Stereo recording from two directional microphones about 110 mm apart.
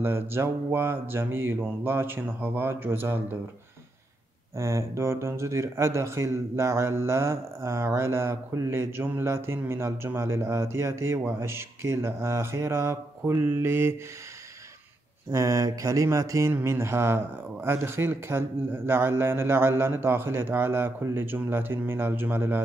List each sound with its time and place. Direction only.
0.0 s speech: 20° right (ahead or behind)
4.6 s speech: 25° right (ahead or behind)
15.3 s speech: 30° right (ahead or behind)